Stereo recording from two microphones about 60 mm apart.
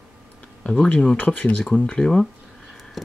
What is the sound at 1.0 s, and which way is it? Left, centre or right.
Speech, left.